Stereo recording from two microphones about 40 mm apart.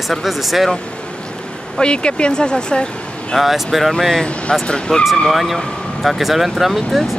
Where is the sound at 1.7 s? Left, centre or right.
Left.